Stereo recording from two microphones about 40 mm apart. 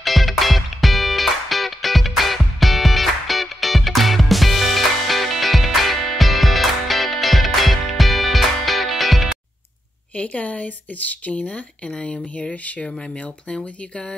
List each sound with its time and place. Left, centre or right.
0.0 s music: centre
10.2 s speech: left
12.8 s speech: centre